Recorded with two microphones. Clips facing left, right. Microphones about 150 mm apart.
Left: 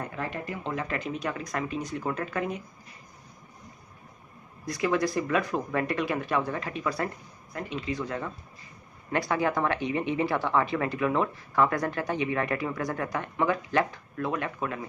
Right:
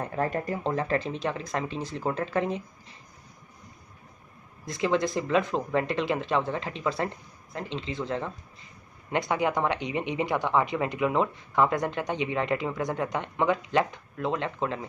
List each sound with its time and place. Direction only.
0.0 s a woman's voice: 40° right (ahead or behind)
4.6 s a woman's voice: 25° right (ahead or behind)